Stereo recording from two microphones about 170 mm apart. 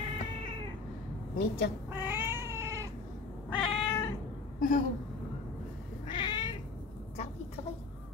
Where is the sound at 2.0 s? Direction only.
10° right (ahead or behind).